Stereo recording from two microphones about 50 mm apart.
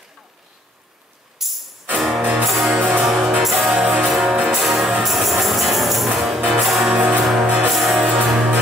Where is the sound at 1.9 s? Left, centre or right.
Centre.